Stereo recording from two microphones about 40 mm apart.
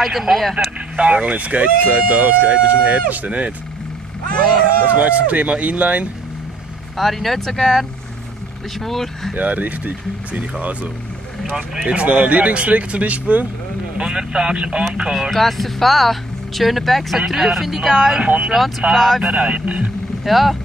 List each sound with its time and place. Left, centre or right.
0.0 s speech: centre
0.9 s speech: right
4.9 s speech: right
7.0 s speech: centre
8.8 s speech: centre
9.3 s speech: right
11.5 s speech: centre
11.9 s speech: right
13.9 s speech: right
15.3 s speech: centre
18.2 s speech: right
18.5 s speech: centre
19.3 s speech: right
20.2 s speech: centre